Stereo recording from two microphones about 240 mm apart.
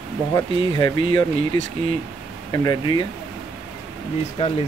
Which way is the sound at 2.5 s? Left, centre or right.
Centre.